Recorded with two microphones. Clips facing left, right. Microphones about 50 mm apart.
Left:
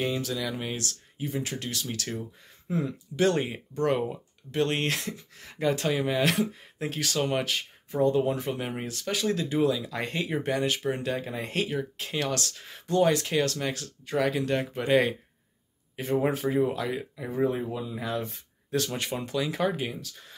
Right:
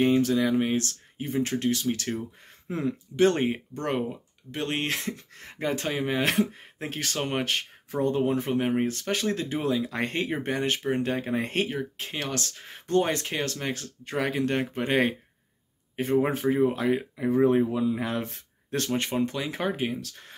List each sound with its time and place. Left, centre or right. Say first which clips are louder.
0.0 s speech: right 7 dB; right
11.7 s speech: left 1 dB; right
17.3 s speech: right 6 dB; right
18.9 s speech: right 3 dB; right
20.0 s speech: right 3 dB; right